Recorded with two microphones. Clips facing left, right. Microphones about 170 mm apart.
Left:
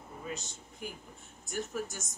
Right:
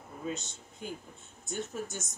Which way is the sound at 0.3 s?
25° right (ahead or behind).